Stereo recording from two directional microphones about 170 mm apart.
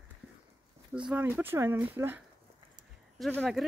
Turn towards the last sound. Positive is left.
turn(degrees=5)  # may be behind; listen again after turning